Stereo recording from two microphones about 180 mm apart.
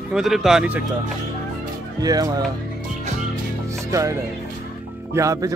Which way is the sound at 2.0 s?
20° right (ahead or behind).